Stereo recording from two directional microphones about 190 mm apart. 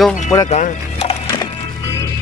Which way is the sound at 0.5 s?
35° left (ahead or behind).